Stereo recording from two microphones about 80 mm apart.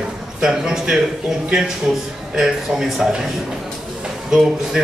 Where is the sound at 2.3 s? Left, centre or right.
Centre.